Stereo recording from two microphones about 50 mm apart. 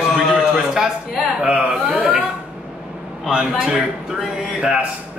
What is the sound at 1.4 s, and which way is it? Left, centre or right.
Speech, right.